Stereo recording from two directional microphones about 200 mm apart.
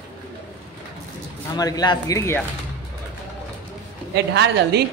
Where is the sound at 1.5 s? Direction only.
20° left (ahead or behind).